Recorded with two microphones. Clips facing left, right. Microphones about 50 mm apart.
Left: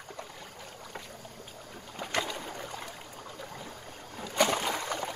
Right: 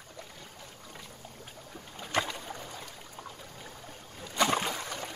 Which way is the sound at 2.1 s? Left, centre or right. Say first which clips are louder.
Right 2 dB; right.